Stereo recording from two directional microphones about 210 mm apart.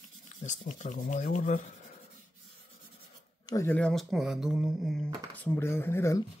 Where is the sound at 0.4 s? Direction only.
35° left (ahead or behind).